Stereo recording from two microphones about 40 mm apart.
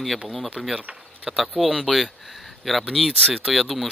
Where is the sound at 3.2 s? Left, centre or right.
Centre.